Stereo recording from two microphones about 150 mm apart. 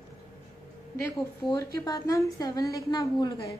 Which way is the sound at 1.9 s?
25° left (ahead or behind).